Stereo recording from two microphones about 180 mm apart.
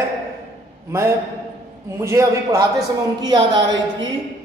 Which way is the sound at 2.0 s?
15° right (ahead or behind).